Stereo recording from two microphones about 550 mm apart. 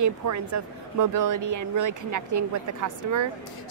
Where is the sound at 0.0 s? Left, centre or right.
Right.